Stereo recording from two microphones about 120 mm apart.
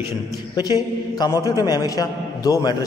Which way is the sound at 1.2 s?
30° left (ahead or behind).